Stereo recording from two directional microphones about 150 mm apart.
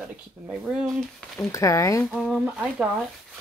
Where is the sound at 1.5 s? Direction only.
20° left (ahead or behind).